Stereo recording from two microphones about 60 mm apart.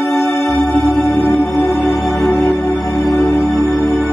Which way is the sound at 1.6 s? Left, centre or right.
Centre.